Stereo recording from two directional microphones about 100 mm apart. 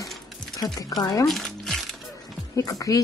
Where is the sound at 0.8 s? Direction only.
40° left (ahead or behind).